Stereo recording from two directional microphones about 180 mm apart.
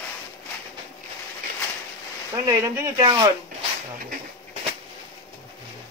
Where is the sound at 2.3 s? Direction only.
20° right (ahead or behind).